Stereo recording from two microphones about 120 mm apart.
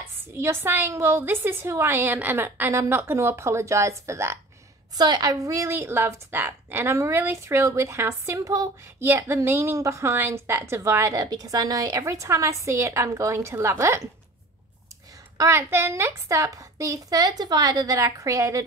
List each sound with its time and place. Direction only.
0.4 s a woman's voice: 20° right (ahead or behind)
4.9 s a woman's voice: 35° right (ahead or behind)
15.3 s a woman's voice: 20° right (ahead or behind)